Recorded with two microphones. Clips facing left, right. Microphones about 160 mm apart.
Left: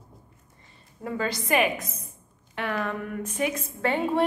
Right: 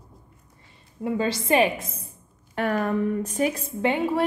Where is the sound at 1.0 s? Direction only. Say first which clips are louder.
Right 4 dB; 25° right (ahead or behind).